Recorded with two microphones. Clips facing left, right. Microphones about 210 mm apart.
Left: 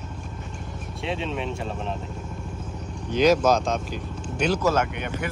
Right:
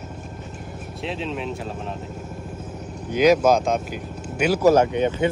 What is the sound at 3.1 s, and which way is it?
Speech, 10° right (ahead or behind).